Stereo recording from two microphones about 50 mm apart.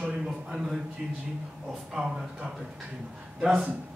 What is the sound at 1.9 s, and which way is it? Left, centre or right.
A man's voice, centre.